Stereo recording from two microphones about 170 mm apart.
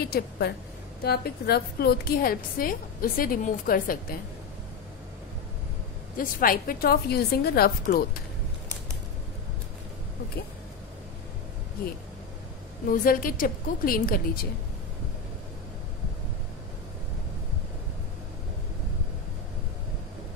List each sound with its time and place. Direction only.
0.0 s a woman's voice: 65° left (ahead or behind)
6.1 s a woman's voice: 55° left (ahead or behind)
13.0 s a woman's voice: 55° left (ahead or behind)